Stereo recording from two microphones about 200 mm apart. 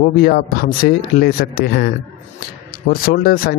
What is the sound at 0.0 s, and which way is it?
A man's voice, 50° left (ahead or behind).